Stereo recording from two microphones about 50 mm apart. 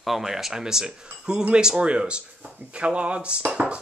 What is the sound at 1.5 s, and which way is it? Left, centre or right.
Dishes, centre.